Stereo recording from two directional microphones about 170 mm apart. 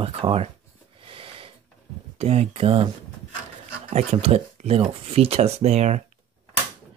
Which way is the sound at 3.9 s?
40° right (ahead or behind).